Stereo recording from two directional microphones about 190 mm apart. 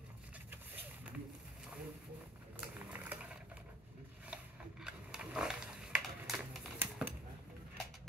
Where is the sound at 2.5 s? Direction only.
5° right (ahead or behind).